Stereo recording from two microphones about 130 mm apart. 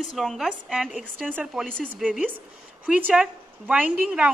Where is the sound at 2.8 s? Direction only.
10° right (ahead or behind).